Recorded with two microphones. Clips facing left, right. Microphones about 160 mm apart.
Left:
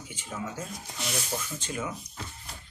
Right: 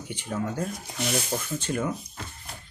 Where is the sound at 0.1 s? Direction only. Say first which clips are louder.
Right 7 dB; 60° right (ahead or behind).